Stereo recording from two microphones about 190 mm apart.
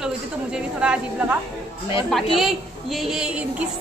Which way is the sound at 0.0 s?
5° right (ahead or behind).